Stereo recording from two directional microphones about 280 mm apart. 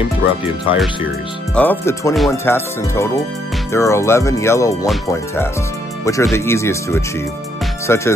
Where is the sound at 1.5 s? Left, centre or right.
Centre.